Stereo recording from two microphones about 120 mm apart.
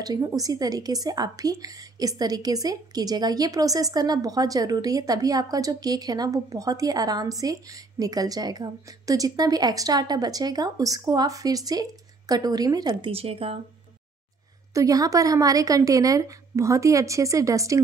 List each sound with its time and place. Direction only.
0.0 s a woman's voice: 30° right (ahead or behind)
13.1 s a woman's voice: 55° right (ahead or behind)
14.7 s a woman's voice: 30° right (ahead or behind)